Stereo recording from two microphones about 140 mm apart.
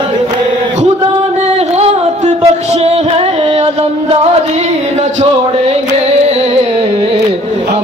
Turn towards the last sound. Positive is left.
turn(degrees=-50)  # may be behind; listen again after turning